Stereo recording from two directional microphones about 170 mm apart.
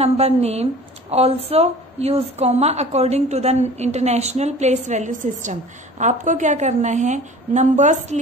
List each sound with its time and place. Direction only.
0.0 s a woman's voice: 40° right (ahead or behind)